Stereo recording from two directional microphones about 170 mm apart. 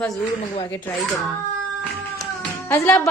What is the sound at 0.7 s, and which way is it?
Speech, 10° left (ahead or behind).